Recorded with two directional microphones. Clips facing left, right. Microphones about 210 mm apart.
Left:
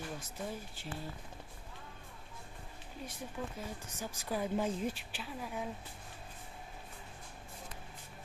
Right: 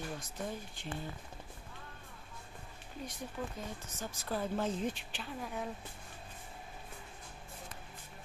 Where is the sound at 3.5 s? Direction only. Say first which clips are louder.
Even; 10° left (ahead or behind).